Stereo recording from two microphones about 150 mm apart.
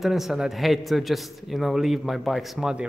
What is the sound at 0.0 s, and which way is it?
A man's voice, centre (ahead or behind).